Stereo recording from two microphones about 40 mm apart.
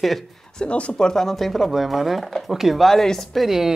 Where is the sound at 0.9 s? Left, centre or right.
Centre.